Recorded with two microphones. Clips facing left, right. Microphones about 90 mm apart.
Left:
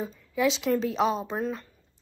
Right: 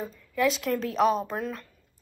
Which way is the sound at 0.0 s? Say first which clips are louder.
Even; centre (ahead or behind).